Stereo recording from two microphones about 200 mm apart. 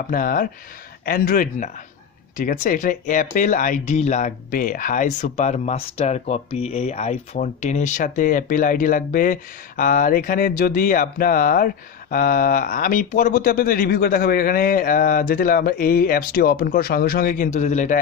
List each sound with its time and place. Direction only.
0.1 s speech: 45° left (ahead or behind)